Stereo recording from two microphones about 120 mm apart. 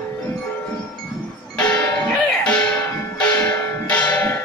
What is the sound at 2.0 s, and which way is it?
Music, 5° left (ahead or behind).